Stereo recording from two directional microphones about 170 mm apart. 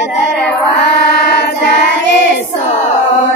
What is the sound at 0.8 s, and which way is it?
Child singing, 75° left (ahead or behind).